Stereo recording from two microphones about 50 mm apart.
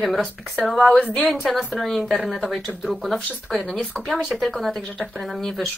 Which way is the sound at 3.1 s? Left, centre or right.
Left.